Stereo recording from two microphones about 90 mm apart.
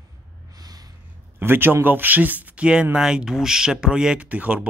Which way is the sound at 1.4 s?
25° right (ahead or behind).